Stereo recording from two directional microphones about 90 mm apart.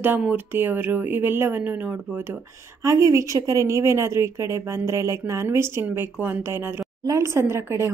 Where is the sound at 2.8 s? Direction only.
40° right (ahead or behind).